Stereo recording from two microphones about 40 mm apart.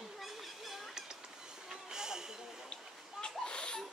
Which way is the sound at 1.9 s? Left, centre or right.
Centre.